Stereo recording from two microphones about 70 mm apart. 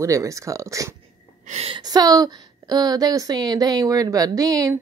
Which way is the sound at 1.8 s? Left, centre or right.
Right.